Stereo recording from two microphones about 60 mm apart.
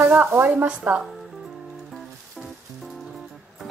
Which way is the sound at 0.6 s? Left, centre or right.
Right.